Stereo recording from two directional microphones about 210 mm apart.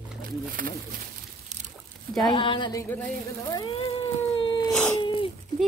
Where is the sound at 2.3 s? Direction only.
25° left (ahead or behind).